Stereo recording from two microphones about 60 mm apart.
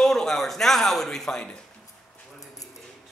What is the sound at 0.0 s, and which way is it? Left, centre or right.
Speech, centre.